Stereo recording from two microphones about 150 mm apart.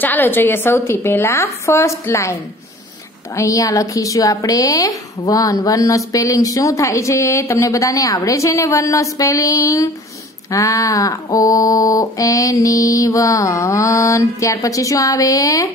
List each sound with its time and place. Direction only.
0.0 s a woman's voice: 10° left (ahead or behind)
3.3 s a woman's voice: 20° left (ahead or behind)